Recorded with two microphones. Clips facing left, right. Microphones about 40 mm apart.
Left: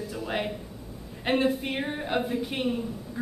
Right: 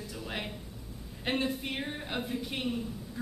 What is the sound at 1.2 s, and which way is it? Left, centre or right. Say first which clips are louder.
A woman's voice: left 7 dB; centre.